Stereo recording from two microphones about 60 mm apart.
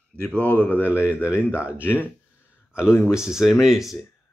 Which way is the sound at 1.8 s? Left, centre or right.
Left.